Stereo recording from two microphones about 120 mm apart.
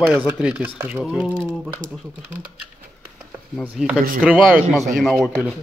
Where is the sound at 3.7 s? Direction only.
5° right (ahead or behind).